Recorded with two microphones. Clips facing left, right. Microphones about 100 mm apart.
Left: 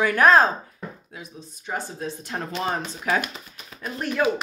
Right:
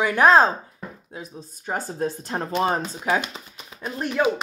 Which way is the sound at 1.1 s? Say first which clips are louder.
Right 3 dB; 40° right (ahead or behind).